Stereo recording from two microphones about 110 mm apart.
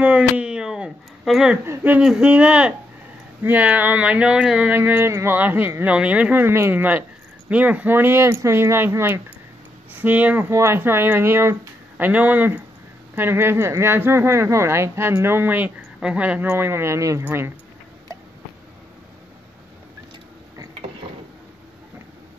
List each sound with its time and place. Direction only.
0.0 s a sound: 10° right (ahead or behind)
1.6 s speech: 20° right (ahead or behind)
2.0 s speech: 5° right (ahead or behind)